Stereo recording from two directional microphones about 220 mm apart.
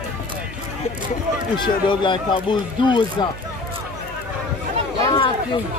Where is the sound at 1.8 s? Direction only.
20° left (ahead or behind).